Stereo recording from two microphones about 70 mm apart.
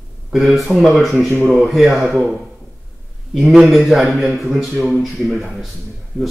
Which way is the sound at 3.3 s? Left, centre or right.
Centre.